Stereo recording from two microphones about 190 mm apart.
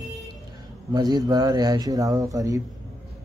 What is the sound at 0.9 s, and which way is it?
Speech, 20° right (ahead or behind).